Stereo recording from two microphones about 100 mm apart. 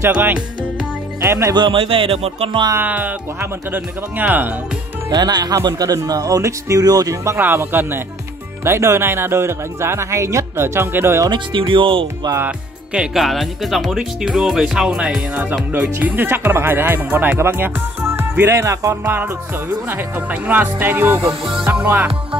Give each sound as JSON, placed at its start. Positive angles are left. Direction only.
{"t": 0.1, "sound": "speech", "side_deg": -15}
{"t": 1.2, "sound": "speech", "side_deg": -30}
{"t": 1.5, "sound": "music", "side_deg": -55}
{"t": 2.7, "sound": "speech", "side_deg": -20}
{"t": 5.1, "sound": "speech", "side_deg": -45}
{"t": 7.3, "sound": "speech", "side_deg": -20}
{"t": 11.2, "sound": "music", "side_deg": -55}
{"t": 12.4, "sound": "speech", "side_deg": -10}
{"t": 16.0, "sound": "speech", "side_deg": -20}
{"t": 18.1, "sound": "music", "side_deg": -25}
{"t": 19.9, "sound": "speech", "side_deg": -20}
{"t": 21.3, "sound": "music", "side_deg": -60}
{"t": 21.6, "sound": "music", "side_deg": -15}